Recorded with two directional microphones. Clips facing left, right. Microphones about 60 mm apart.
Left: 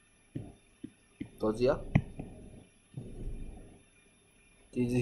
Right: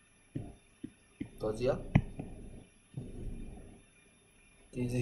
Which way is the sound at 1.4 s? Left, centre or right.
Left.